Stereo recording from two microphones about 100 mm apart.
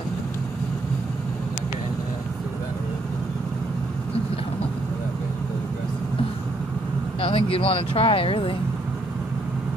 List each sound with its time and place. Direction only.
7.2 s speech: 65° left (ahead or behind)